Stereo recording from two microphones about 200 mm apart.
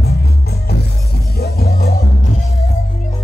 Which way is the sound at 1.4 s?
50° left (ahead or behind).